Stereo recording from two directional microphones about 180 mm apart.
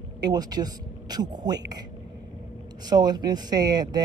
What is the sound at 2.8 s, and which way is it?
Speech, 25° right (ahead or behind).